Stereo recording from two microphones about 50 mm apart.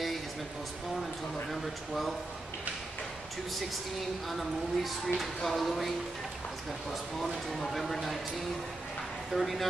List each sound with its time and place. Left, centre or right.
1.5 s speech: centre
4.3 s speech: centre
7.2 s speech: centre
9.3 s speech: centre